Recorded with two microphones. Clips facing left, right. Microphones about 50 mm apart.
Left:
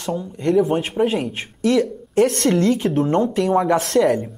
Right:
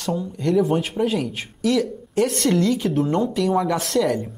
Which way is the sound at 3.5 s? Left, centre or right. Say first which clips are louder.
Left 4 dB; left.